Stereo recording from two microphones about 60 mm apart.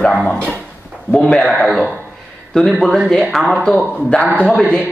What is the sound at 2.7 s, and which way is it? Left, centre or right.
A woman's voice, centre.